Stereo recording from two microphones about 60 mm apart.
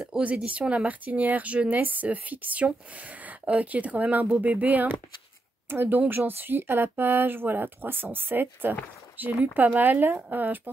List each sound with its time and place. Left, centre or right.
0.2 s speech: right